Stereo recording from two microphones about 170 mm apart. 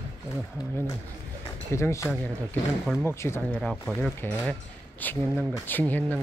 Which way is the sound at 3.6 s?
Centre (ahead or behind).